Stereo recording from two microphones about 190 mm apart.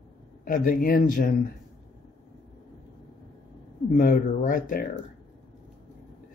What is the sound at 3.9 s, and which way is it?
Speech, 50° left (ahead or behind).